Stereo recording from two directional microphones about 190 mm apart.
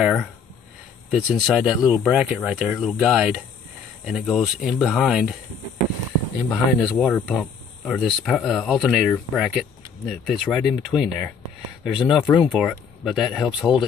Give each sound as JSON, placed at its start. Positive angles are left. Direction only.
{"t": 0.0, "sound": "speech", "side_deg": 0}
{"t": 6.5, "sound": "speech", "side_deg": 0}